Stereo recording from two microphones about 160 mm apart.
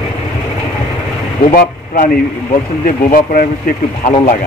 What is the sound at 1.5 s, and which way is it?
Speech, 60° left (ahead or behind).